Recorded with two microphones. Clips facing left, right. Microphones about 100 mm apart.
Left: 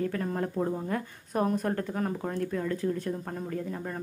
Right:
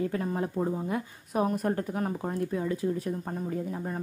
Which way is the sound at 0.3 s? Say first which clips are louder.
Even; 5° right (ahead or behind).